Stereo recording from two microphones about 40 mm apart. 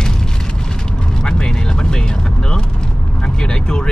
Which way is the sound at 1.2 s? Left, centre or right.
Left.